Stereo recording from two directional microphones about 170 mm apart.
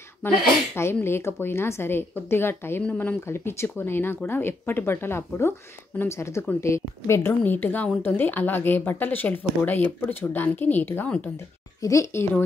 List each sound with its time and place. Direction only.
0.2 s a woman's voice: 10° left (ahead or behind)